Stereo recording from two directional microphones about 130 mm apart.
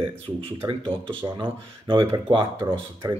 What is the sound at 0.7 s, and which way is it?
A man's voice, 40° right (ahead or behind).